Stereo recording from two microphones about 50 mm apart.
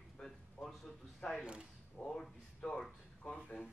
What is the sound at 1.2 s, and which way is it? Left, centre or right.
Speech, left.